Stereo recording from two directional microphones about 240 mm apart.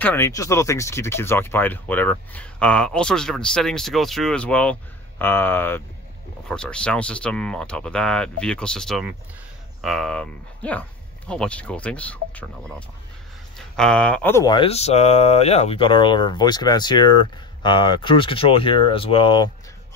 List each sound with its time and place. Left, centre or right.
0.0 s speech: centre